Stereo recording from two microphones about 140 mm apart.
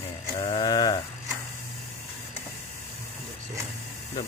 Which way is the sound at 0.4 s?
35° left (ahead or behind).